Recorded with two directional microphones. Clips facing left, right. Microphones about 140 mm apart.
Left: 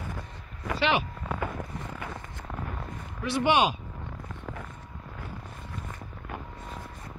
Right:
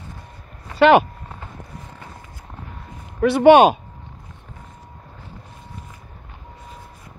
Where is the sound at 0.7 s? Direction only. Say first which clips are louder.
Right 14 dB; 55° right (ahead or behind).